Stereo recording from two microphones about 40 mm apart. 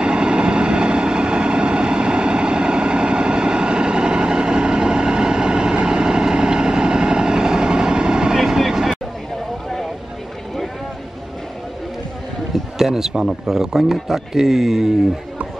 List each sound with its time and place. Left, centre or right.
0.0 s vehicle: right
12.7 s speech: centre